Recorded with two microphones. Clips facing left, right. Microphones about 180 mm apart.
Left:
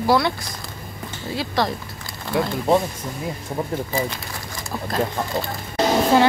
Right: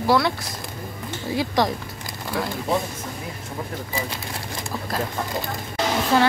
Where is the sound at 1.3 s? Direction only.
15° right (ahead or behind).